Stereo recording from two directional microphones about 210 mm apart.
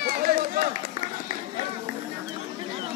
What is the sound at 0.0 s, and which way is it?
Run, 45° right (ahead or behind).